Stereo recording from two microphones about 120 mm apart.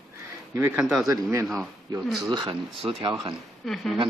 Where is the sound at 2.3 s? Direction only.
45° right (ahead or behind).